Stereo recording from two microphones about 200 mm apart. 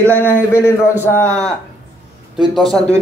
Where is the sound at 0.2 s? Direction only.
10° left (ahead or behind).